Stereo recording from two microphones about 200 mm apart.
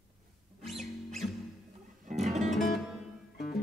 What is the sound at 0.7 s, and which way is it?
Music, centre (ahead or behind).